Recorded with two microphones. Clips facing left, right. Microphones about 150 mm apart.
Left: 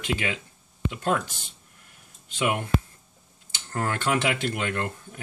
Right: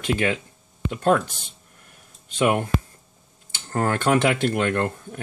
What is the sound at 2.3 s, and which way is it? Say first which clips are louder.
Speech: right 5 dB; 40° right (ahead or behind).